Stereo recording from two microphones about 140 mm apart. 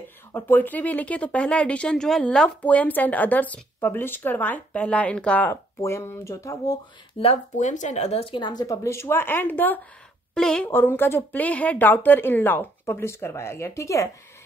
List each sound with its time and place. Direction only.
0.3 s speech: 15° left (ahead or behind)
7.2 s a woman's voice: 55° left (ahead or behind); by 10.7 s 5° left (ahead or behind)
10.7 s speech: 15° left (ahead or behind)